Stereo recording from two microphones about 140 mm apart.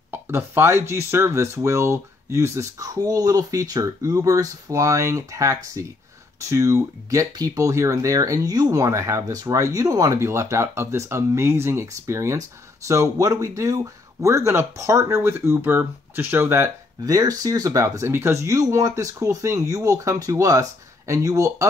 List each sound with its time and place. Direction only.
0.1 s speech: 15° right (ahead or behind)